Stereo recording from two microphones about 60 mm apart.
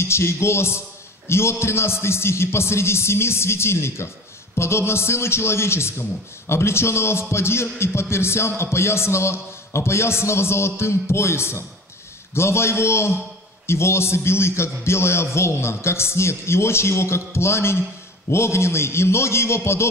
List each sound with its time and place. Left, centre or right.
0.0 s a man's voice: left